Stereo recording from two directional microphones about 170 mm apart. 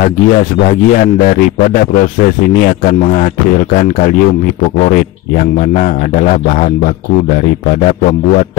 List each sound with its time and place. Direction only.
0.7 s speech: 55° left (ahead or behind)
2.6 s a man's voice: 55° left (ahead or behind)